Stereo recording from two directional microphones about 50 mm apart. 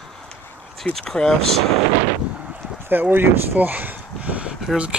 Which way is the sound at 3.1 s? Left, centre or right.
Right.